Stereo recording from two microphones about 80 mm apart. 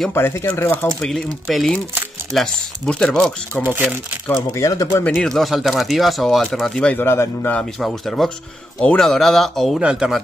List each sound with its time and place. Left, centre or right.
0.1 s speech: left
1.0 s speech: centre
4.6 s speech: left
5.0 s speech: centre
6.8 s speech: centre
7.1 s a man's voice: left
7.8 s speech: centre
9.8 s speech: centre